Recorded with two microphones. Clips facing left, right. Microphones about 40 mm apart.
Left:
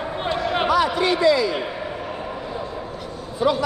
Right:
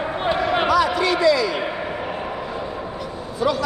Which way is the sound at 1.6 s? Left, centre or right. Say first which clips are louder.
Right 3 dB; right.